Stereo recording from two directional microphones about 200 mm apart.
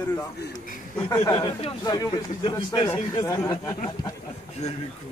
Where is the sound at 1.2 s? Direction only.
25° left (ahead or behind).